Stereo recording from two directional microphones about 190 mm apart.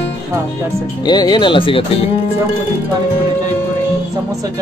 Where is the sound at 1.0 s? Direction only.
20° left (ahead or behind).